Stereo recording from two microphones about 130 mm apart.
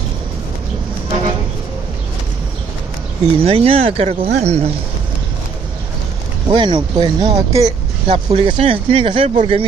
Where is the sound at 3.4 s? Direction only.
50° right (ahead or behind).